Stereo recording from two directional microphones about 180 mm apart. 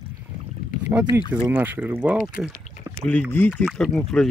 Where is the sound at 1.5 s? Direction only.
10° right (ahead or behind).